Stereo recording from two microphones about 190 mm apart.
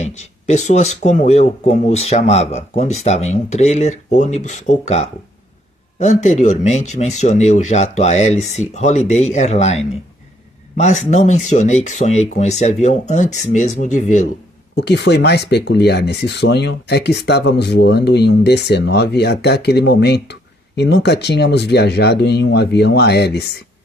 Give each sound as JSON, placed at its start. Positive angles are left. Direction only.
{"t": 0.0, "sound": "speech", "side_deg": 40}
{"t": 14.8, "sound": "speech", "side_deg": 65}